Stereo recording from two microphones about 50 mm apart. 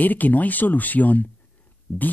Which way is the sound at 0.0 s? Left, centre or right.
Left.